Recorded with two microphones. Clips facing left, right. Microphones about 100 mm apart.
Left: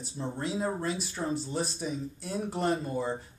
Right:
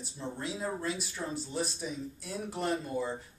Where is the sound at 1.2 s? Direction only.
25° left (ahead or behind).